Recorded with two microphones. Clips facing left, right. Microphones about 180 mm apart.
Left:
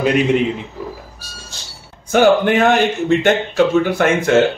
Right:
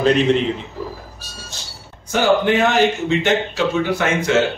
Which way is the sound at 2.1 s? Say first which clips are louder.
Left 4 dB; 55° left (ahead or behind).